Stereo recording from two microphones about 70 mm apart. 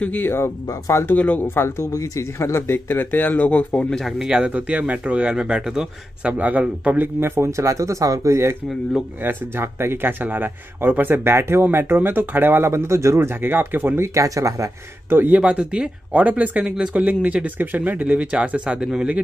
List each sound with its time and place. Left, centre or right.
0.0 s speech: left
1.4 s speech: left
1.9 s speech: left
4.2 s speech: centre
7.2 s speech: right
14.2 s speech: right
15.0 s speech: right; by 19.0 s centre